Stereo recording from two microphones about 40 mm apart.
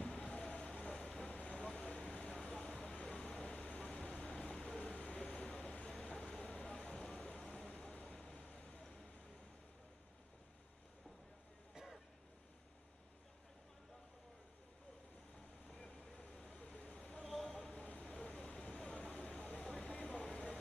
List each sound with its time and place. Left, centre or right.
0.0 s vehicle: centre
1.2 s vehicle: left
15.7 s vehicle: centre
16.5 s vehicle: left
17.2 s a sound: centre
17.7 s vehicle: left